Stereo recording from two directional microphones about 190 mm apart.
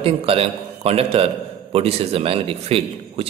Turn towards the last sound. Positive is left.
turn(degrees=-30)  # may be behind; listen again after turning